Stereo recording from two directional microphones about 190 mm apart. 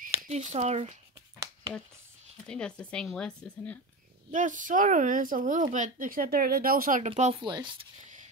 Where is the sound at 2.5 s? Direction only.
5° left (ahead or behind).